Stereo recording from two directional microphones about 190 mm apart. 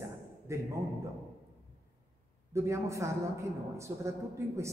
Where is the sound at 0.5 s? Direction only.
15° right (ahead or behind).